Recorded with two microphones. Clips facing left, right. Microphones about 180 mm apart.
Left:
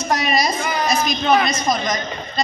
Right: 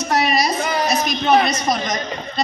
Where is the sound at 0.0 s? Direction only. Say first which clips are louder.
Right 1 dB; 65° right (ahead or behind).